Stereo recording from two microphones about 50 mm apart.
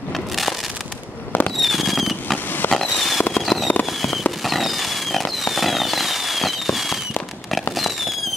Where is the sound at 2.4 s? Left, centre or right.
Left.